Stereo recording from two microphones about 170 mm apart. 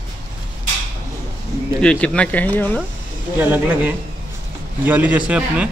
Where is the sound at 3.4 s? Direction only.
10° right (ahead or behind).